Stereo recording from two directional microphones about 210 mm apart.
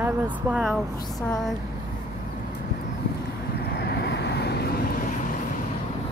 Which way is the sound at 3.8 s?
55° left (ahead or behind).